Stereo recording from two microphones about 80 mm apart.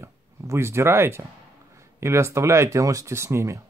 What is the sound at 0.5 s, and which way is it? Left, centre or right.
Speech, right.